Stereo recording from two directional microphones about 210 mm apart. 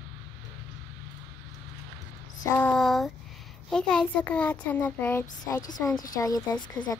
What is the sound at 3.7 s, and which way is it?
A child's voice, 5° left (ahead or behind).